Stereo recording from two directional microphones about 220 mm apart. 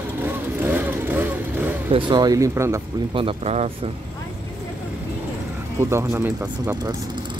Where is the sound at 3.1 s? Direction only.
25° right (ahead or behind).